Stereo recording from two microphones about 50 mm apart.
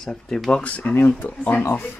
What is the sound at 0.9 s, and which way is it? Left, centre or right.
Speech, left.